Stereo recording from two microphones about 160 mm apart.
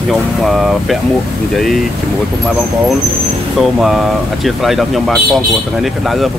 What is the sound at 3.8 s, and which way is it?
Speech, centre (ahead or behind).